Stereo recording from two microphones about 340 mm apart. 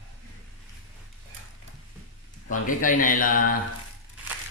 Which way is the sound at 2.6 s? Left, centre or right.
Left.